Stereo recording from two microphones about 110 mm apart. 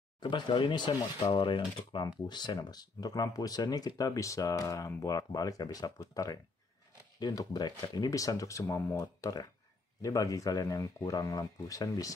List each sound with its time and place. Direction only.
0.2 s speech: 45° left (ahead or behind)